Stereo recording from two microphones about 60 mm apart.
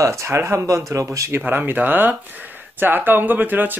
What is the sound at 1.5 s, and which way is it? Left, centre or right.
Speech, right.